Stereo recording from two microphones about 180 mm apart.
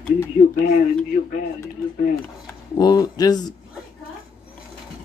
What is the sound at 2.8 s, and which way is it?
Speech, 20° left (ahead or behind).